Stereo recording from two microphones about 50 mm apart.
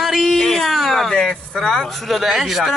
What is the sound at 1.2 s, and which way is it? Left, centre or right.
Speech, centre.